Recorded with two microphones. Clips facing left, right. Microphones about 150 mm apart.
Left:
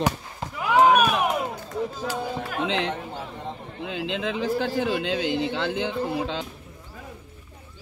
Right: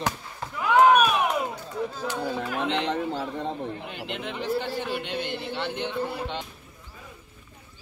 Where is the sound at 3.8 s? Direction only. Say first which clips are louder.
Left 6 dB; 90° left.